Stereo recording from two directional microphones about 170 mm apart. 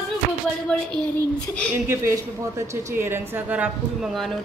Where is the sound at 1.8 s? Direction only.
15° right (ahead or behind).